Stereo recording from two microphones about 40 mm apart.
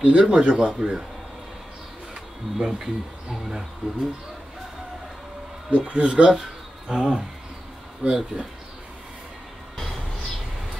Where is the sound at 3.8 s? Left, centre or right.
Right.